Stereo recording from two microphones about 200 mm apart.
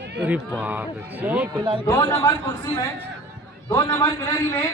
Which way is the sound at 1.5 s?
25° right (ahead or behind).